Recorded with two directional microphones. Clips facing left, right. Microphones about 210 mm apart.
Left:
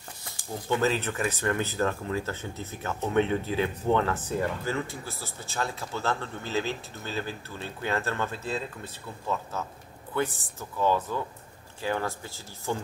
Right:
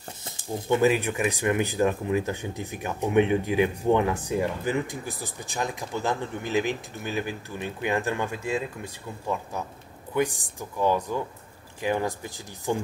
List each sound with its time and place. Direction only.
0.2 s speech: 20° right (ahead or behind)